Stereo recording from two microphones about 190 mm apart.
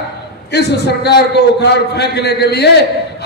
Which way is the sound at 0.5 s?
60° left (ahead or behind).